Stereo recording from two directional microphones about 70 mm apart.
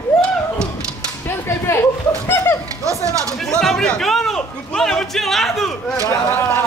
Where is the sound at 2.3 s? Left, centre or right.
Left.